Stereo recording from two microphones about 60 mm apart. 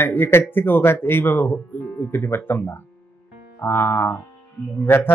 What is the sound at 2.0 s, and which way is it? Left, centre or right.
A man's voice, left.